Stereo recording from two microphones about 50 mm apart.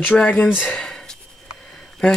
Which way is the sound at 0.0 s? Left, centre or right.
Left.